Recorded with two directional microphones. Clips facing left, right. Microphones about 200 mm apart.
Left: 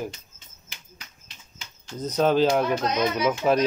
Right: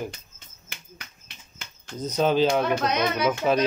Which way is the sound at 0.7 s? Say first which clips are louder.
Right 3 dB; 60° right (ahead or behind).